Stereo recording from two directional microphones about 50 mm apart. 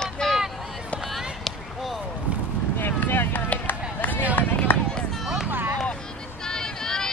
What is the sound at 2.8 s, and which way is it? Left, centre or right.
Vehicle, left.